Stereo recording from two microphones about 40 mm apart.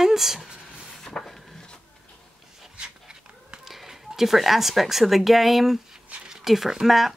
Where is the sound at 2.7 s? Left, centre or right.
Right.